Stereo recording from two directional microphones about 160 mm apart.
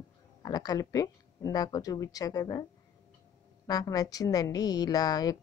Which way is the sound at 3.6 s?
25° left (ahead or behind).